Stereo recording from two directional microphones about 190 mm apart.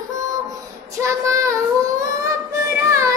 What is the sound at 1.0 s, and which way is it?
Child singing, 15° right (ahead or behind).